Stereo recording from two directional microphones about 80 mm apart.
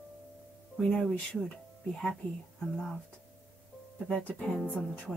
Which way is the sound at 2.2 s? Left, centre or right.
Left.